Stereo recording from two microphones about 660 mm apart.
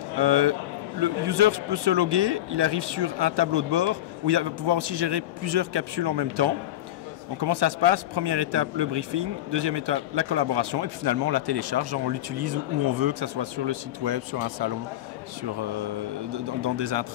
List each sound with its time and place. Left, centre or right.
0.2 s speech: right